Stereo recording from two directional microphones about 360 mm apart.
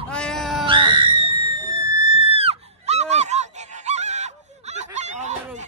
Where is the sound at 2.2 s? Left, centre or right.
Centre.